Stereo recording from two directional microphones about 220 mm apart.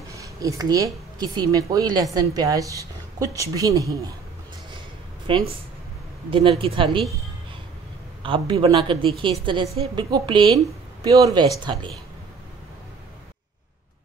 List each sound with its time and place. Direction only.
0.1 s a woman's voice: 15° right (ahead or behind)
5.3 s a man's voice: 25° right (ahead or behind)
6.6 s a man's voice: 25° right (ahead or behind)
8.2 s a man's voice: 25° right (ahead or behind)